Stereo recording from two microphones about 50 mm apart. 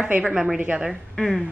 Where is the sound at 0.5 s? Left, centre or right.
Right.